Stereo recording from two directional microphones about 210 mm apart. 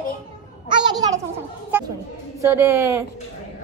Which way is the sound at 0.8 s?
15° right (ahead or behind).